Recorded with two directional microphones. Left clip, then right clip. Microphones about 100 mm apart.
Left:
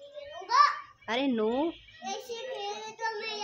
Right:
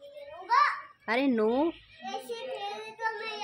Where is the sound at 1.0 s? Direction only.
45° right (ahead or behind).